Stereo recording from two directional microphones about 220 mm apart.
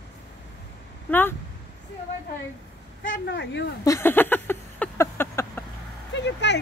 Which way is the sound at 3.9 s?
10° left (ahead or behind).